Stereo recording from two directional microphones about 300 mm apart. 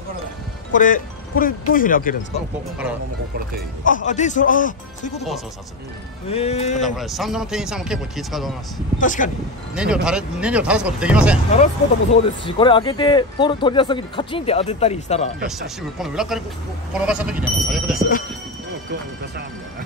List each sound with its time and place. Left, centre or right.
0.7 s speech: left
3.8 s speech: left
6.3 s speech: left
6.8 s a man's voice: centre
9.0 s speech: left
9.8 s a man's voice: centre
11.5 s speech: left
15.4 s a man's voice: centre